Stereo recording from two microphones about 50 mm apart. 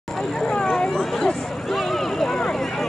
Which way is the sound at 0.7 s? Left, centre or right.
Centre.